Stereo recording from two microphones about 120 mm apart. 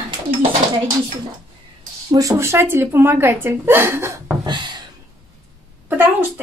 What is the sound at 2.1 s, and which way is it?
A woman's voice, 30° right (ahead or behind).